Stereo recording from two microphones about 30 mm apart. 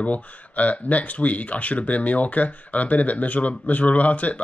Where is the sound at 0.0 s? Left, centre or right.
Left.